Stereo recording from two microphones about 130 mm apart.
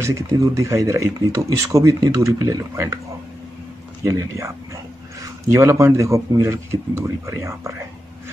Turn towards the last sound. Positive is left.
turn(degrees=-25)  # may be behind; listen again after turning